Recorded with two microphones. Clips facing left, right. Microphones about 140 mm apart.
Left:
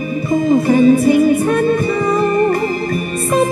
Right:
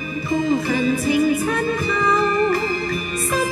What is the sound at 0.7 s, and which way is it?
Music, 45° left (ahead or behind).